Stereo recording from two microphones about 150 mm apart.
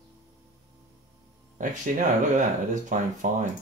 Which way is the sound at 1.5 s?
60° right (ahead or behind).